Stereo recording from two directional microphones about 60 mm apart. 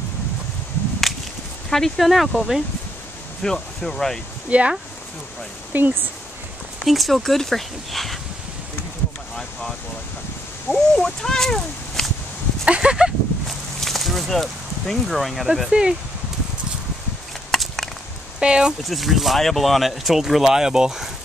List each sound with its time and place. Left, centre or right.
1.1 s whip: centre
1.7 s speech: centre
3.4 s speech: centre
4.5 s speech: right
6.8 s speech: centre
10.7 s speech: centre
12.6 s speech: centre
13.5 s a sound: centre
17.5 s chop: centre
18.4 s speech: centre
18.9 s speech: centre